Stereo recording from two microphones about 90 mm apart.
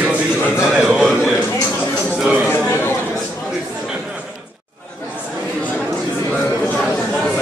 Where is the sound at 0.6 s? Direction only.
5° right (ahead or behind).